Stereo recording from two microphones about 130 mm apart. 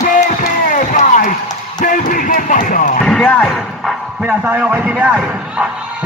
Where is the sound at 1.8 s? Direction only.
90° left.